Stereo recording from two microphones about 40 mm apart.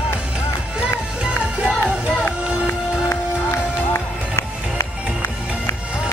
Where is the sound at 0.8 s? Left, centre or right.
Right.